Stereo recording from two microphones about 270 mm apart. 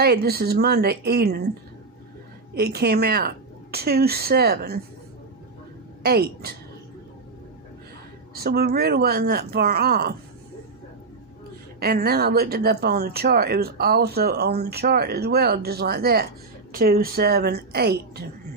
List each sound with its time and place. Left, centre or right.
0.0 s speech: right
2.5 s speech: right
6.0 s speech: right
8.4 s speech: right
11.8 s speech: right